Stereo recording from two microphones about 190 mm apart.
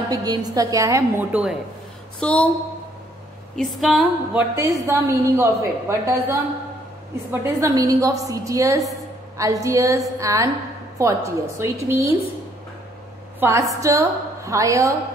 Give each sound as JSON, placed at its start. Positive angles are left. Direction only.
{"t": 0.1, "sound": "a woman's voice", "side_deg": -20}
{"t": 2.1, "sound": "a sound", "side_deg": 5}
{"t": 3.5, "sound": "a woman's voice", "side_deg": 0}
{"t": 7.2, "sound": "a woman's voice", "side_deg": -15}
{"t": 13.4, "sound": "a woman's voice", "side_deg": -15}